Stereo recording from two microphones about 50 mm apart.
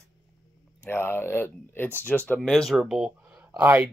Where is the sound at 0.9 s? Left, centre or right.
Left.